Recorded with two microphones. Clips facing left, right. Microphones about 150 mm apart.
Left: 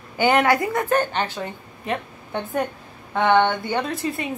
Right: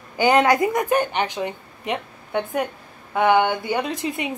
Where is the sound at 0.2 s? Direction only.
20° right (ahead or behind).